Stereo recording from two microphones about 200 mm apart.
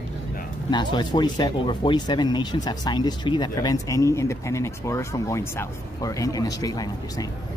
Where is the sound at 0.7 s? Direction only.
20° left (ahead or behind).